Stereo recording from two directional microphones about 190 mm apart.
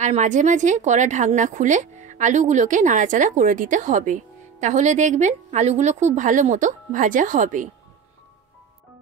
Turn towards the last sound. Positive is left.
turn(degrees=-45)  # may be behind; listen again after turning